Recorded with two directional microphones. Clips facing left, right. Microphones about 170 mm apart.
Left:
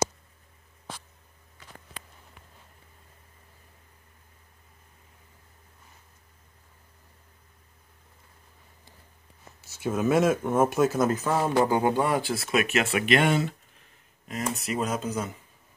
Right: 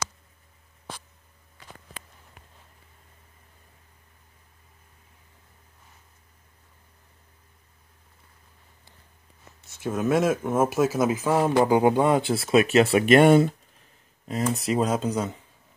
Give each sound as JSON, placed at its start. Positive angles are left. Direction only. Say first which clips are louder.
{"t": 9.6, "sound": "speech", "louder": "even", "side_deg": 0}
{"t": 14.2, "sound": "speech", "louder": "right 5 dB", "side_deg": -30}